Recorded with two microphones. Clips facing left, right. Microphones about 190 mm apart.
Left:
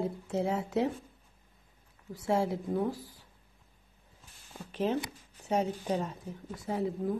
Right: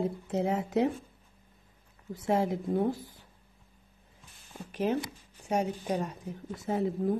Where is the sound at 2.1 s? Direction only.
20° right (ahead or behind).